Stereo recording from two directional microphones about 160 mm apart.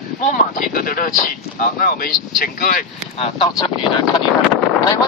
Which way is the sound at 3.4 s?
25° left (ahead or behind).